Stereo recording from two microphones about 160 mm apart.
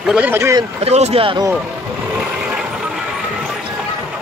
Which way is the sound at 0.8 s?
40° right (ahead or behind).